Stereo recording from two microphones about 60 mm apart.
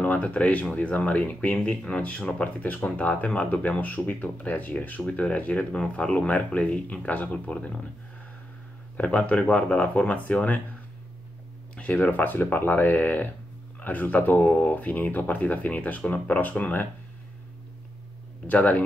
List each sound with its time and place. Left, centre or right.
0.0 s speech: left
8.9 s speech: left
11.7 s speech: left
18.5 s speech: left